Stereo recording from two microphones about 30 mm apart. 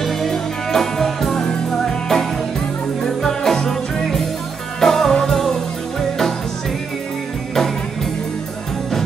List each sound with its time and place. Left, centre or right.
0.0 s music: centre